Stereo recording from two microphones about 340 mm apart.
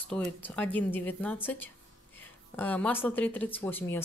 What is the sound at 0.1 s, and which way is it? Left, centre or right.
Speech, centre.